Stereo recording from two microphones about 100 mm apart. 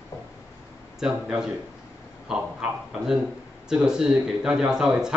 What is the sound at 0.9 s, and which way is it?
Speech, 5° right (ahead or behind).